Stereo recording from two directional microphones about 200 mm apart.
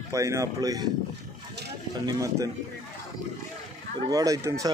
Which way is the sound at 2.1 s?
15° right (ahead or behind).